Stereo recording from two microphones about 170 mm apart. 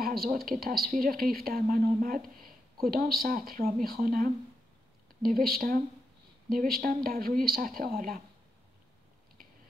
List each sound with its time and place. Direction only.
0.0 s a woman's voice: 60° right (ahead or behind)